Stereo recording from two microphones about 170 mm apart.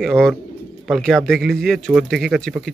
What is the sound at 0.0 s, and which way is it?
Speech, centre (ahead or behind).